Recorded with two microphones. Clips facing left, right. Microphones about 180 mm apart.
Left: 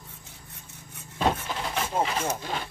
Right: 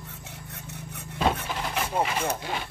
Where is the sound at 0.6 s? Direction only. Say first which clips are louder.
Right 9 dB; 70° right (ahead or behind).